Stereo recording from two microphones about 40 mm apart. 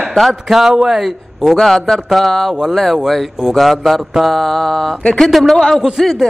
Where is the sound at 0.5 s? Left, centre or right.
Centre.